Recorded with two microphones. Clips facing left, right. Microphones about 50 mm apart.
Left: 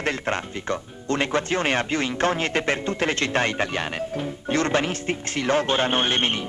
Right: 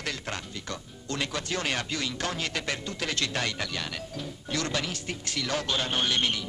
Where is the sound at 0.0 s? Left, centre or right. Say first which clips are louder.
Left 9 dB; left.